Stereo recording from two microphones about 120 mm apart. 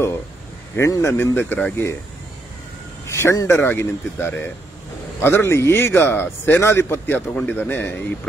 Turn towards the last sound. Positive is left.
turn(degrees=15)  # may be behind; listen again after turning